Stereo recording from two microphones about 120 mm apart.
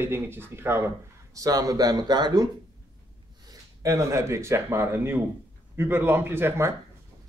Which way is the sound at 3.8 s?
25° right (ahead or behind).